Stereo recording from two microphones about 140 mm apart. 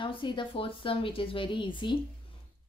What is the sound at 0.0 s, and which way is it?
A woman's voice, 35° left (ahead or behind).